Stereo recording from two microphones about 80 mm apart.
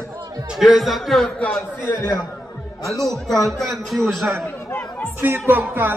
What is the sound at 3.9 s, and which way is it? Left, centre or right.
Speech, centre.